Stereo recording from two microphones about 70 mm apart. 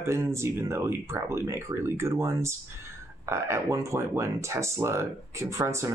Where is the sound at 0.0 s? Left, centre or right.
Right.